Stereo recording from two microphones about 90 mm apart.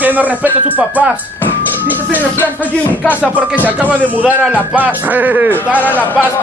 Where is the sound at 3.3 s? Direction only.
20° right (ahead or behind).